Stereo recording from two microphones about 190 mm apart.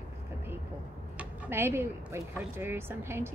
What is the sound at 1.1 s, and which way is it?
Speech, 10° right (ahead or behind).